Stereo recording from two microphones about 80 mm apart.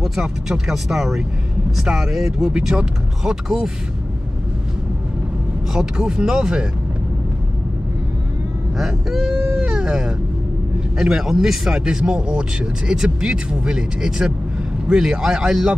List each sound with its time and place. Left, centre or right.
0.0 s speech: centre
5.7 s speech: centre
8.7 s speech: centre